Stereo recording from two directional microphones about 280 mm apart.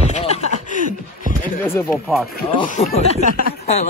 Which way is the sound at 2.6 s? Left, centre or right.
Left.